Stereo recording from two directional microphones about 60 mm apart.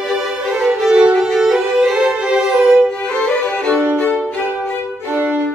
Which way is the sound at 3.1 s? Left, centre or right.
Centre.